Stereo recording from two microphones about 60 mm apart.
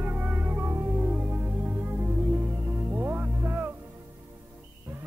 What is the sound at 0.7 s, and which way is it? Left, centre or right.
Music, right.